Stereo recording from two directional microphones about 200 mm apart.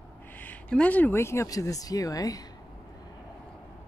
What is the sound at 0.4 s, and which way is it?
Speech, 5° left (ahead or behind).